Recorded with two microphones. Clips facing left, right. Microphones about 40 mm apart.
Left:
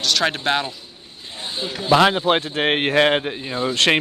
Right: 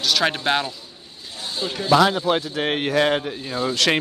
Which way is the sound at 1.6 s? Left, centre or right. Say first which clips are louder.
Left 1 dB; left.